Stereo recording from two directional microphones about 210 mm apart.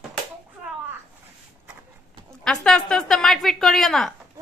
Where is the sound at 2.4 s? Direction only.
5° left (ahead or behind).